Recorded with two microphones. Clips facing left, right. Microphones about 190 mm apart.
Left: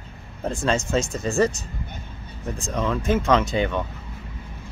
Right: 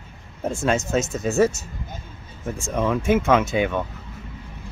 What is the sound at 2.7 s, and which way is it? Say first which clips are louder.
Speech: right 3 dB; 10° right (ahead or behind).